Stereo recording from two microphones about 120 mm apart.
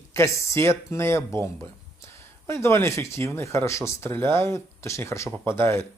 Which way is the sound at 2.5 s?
20° left (ahead or behind).